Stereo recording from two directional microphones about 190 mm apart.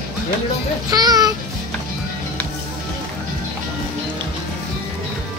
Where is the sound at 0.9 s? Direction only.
20° right (ahead or behind).